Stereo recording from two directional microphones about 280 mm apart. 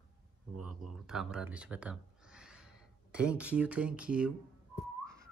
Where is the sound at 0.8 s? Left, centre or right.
Centre.